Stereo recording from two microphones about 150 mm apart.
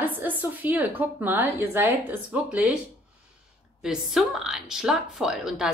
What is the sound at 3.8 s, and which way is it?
Speech, 5° right (ahead or behind).